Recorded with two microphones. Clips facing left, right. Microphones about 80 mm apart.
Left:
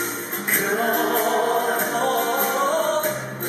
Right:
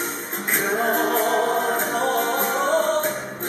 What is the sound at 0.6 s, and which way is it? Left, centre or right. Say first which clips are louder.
Music: even; centre.